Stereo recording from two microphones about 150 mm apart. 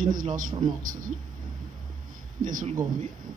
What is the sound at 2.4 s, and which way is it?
Speech, 60° right (ahead or behind).